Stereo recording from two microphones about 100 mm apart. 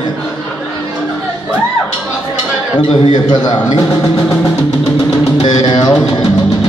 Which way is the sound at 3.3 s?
45° left (ahead or behind).